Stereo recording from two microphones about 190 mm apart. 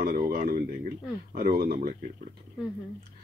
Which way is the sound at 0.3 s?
50° right (ahead or behind).